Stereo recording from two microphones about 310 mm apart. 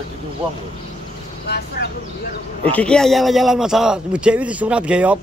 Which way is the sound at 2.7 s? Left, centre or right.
Centre.